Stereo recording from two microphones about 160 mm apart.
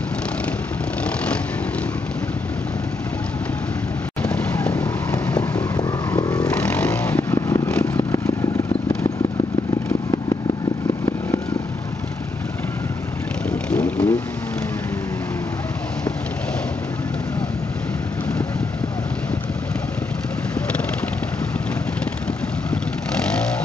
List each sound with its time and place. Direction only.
1.0 s vehicle: 5° left (ahead or behind)
4.2 s vehicle: 5° left (ahead or behind)
5.8 s vehicle: 25° left (ahead or behind)
6.5 s vehicle: 10° left (ahead or behind)
13.5 s vehicle: 10° left (ahead or behind)